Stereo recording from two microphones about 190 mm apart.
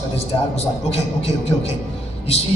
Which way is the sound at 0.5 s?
35° left (ahead or behind).